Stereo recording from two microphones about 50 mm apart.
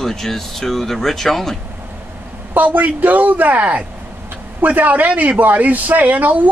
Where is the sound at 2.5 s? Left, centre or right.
Right.